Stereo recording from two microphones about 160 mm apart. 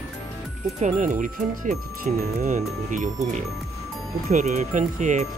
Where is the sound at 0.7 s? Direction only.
50° right (ahead or behind).